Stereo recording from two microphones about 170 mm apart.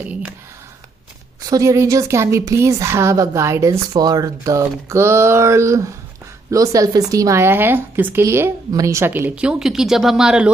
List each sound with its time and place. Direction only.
0.0 s speech: 10° right (ahead or behind)
1.5 s a woman's voice: 20° right (ahead or behind)